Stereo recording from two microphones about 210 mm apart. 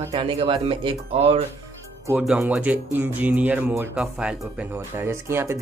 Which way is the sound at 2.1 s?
5° right (ahead or behind).